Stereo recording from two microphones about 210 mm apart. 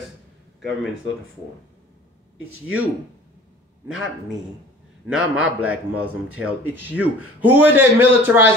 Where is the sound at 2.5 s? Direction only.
80° right.